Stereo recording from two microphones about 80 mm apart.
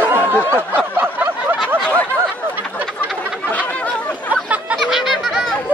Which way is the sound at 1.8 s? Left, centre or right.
Centre.